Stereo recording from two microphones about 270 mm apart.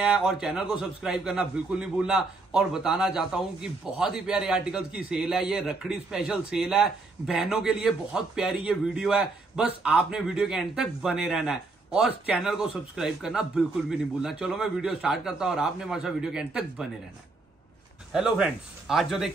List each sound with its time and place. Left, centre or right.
0.0 s a man's voice: centre
18.1 s a man's voice: centre